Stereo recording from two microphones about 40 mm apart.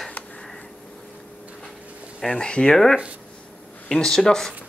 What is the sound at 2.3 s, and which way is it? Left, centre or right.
Speech, left.